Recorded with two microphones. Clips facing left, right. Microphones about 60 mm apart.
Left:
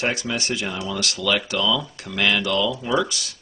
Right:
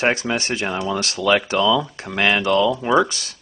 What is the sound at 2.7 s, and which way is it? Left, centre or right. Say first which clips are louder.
Speech: right 5 dB; right.